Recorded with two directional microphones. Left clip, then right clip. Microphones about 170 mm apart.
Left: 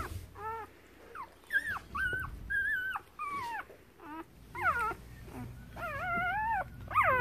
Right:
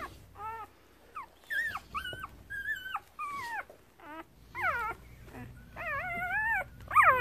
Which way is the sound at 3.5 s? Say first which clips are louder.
Right 2 dB; 25° right (ahead or behind).